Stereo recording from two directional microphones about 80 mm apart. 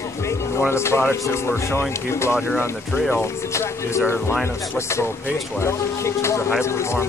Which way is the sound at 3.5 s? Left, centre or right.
Left.